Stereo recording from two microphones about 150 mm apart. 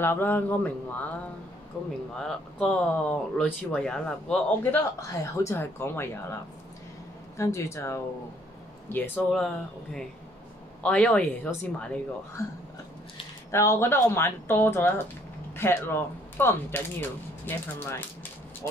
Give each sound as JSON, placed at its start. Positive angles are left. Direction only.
{"t": 0.0, "sound": "speech", "side_deg": 15}
{"t": 2.1, "sound": "speech", "side_deg": 5}
{"t": 10.8, "sound": "speech", "side_deg": 10}
{"t": 13.5, "sound": "speech", "side_deg": 15}